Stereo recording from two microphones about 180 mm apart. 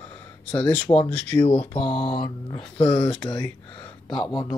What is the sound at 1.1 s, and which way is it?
Speech, 10° left (ahead or behind).